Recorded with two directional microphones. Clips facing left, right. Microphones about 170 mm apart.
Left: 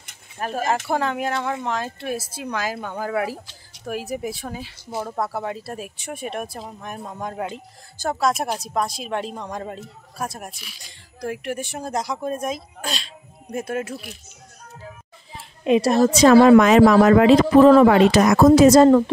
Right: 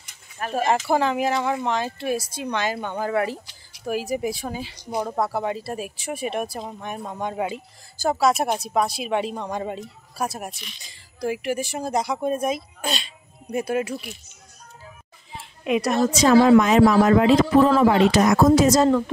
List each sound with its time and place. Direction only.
0.5 s speech: centre (ahead or behind)
4.8 s speech: 15° right (ahead or behind)
5.1 s speech: centre (ahead or behind)
15.6 s a woman's voice: 30° left (ahead or behind)
16.0 s speech: 60° left (ahead or behind)